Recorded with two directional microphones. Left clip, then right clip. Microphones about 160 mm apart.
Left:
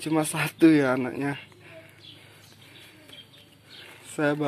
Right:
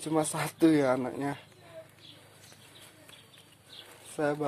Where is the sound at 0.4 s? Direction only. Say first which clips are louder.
Left 6 dB; 20° right (ahead or behind).